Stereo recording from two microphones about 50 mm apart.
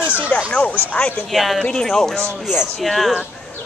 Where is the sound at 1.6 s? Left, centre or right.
Centre.